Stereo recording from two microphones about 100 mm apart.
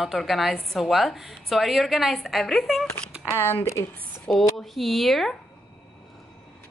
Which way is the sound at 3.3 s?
20° left (ahead or behind).